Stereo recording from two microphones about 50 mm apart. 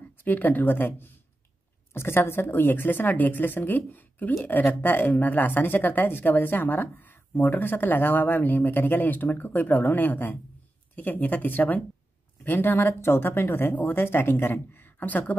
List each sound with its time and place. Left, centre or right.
0.2 s a woman's voice: left